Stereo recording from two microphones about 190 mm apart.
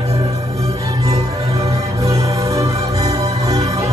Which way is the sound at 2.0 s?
15° right (ahead or behind).